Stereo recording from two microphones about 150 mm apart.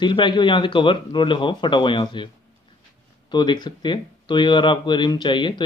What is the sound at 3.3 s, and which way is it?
Speech, 30° left (ahead or behind).